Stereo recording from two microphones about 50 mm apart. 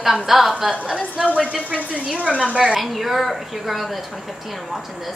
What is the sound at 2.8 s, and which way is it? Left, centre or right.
A woman's voice, centre.